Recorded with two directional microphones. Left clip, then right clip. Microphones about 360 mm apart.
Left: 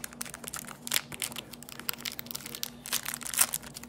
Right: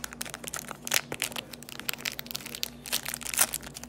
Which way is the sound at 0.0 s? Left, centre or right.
Centre.